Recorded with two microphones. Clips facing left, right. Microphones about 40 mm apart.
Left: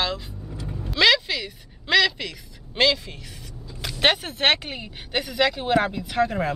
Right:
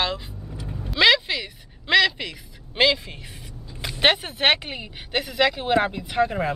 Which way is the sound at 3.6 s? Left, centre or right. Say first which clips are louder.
Right 1 dB; centre.